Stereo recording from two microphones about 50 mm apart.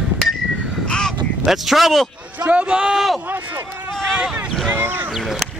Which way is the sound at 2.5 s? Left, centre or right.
Right.